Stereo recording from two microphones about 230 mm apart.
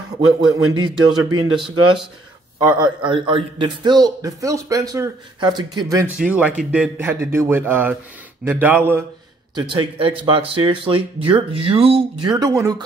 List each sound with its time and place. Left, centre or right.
0.2 s a man's voice: right
2.8 s a man's voice: right
6.1 s a man's voice: centre
9.6 s speech: right